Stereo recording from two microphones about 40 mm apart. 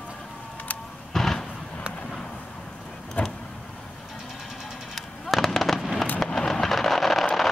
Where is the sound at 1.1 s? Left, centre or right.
Centre.